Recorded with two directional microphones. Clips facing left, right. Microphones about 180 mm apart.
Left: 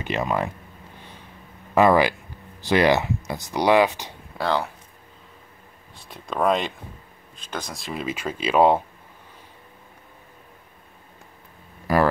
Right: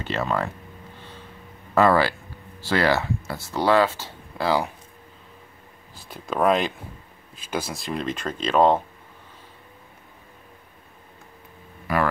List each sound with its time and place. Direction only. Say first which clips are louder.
0.0 s speech: left 1 dB; 15° left (ahead or behind)
1.8 s speech: left 1 dB; 15° left (ahead or behind)
4.4 s speech: right 1 dB; 5° right (ahead or behind)
5.9 s speech: right 1 dB; centre (ahead or behind)
11.9 s speech: left 4 dB; 40° left (ahead or behind)